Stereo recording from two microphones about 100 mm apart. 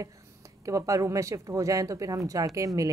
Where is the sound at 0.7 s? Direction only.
35° right (ahead or behind).